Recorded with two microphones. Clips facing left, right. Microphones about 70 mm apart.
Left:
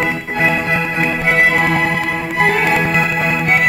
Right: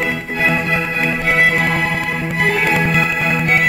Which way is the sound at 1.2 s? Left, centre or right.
Left.